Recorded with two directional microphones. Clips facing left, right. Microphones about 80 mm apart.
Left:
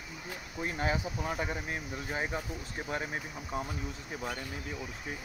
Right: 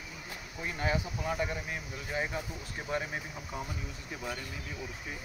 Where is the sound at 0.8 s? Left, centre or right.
Left.